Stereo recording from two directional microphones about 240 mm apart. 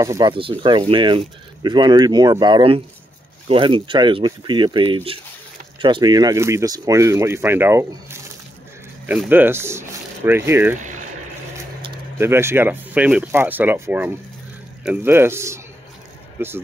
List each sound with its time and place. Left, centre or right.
0.0 s speech: centre